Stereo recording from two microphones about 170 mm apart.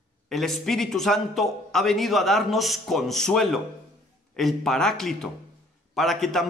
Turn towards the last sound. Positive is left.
turn(degrees=0)  # may be behind; listen again after turning